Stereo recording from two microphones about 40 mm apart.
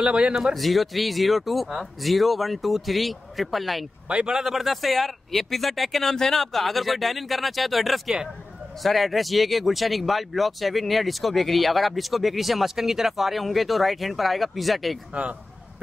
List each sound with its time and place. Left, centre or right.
0.0 s speech: right
0.6 s speech: centre
4.1 s speech: right
4.4 s speech: centre